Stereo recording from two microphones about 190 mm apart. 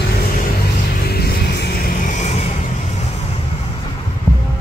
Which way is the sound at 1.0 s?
55° left (ahead or behind).